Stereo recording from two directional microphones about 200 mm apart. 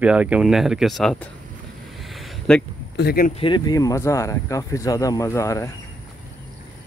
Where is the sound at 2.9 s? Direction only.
50° left (ahead or behind).